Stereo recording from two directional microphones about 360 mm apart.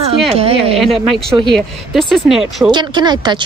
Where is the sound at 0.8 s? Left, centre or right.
Centre.